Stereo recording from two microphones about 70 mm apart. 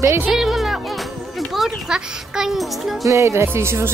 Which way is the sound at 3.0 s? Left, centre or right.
Right.